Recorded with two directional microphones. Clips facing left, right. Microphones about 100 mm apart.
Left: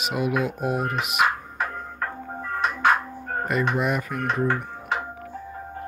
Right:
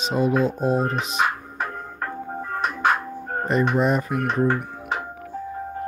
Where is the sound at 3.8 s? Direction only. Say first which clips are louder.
Right 4 dB; 35° right (ahead or behind).